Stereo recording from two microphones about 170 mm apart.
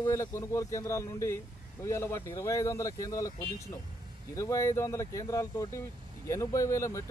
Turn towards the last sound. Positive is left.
turn(degrees=15)  # may be behind; listen again after turning